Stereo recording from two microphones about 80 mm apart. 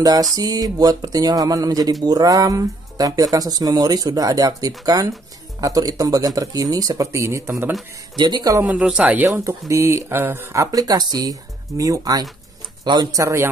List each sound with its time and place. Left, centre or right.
0.0 s speech: right
8.2 s speech: right
8.6 s speech: centre
9.3 s speech: right